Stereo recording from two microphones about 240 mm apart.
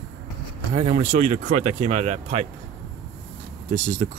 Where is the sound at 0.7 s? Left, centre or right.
Right.